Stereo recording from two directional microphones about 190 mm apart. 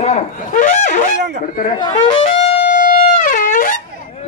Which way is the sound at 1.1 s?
65° right (ahead or behind).